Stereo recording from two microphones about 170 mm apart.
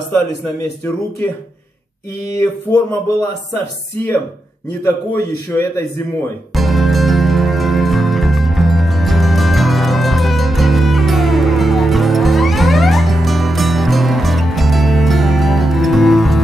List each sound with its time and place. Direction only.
2.2 s a sound: 20° left (ahead or behind)
4.8 s a man's voice: 15° left (ahead or behind)
6.5 s music: centre (ahead or behind)